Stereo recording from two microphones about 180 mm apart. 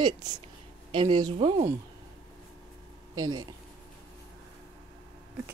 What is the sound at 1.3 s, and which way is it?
Speech, 35° right (ahead or behind).